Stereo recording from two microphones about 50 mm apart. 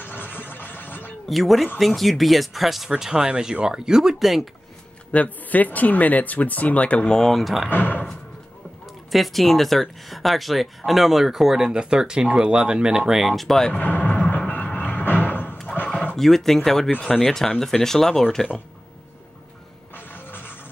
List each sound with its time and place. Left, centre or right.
0.0 s a sound: left
1.2 s speech: centre
5.1 s speech: left
7.2 s speech: centre
7.7 s speech: left
9.1 s speech: centre
13.3 s speech: centre
13.7 s vehicle: left
14.5 s music: left
15.7 s a sound: centre
16.2 s speech: centre
20.0 s music: left